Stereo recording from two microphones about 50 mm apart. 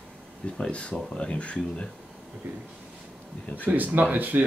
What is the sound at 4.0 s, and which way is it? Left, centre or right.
Speech, right.